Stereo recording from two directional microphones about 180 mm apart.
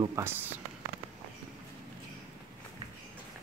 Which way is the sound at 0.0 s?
15° right (ahead or behind).